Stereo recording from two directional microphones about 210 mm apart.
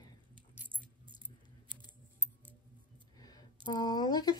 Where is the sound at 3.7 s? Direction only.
20° left (ahead or behind).